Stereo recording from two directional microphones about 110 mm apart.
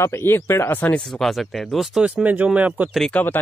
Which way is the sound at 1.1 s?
Centre (ahead or behind).